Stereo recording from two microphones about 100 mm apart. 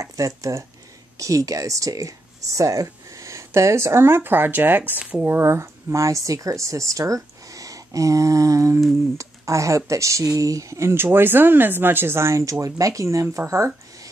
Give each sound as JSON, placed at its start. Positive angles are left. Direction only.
{"t": 0.0, "sound": "speech", "side_deg": -35}
{"t": 7.4, "sound": "a sound", "side_deg": -35}
{"t": 9.2, "sound": "speech", "side_deg": -30}